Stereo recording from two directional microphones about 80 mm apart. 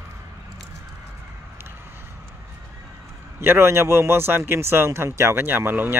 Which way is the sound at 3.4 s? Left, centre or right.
Right.